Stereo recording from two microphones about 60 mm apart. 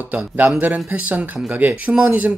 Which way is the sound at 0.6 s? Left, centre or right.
Right.